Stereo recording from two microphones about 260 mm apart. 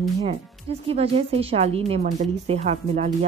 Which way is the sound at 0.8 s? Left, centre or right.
Right.